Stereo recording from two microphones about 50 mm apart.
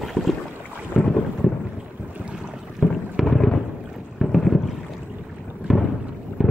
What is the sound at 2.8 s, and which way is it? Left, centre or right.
Boat, centre.